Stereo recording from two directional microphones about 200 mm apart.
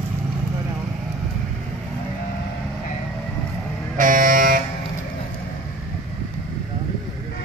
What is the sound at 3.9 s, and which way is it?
Vehicle, 40° right (ahead or behind).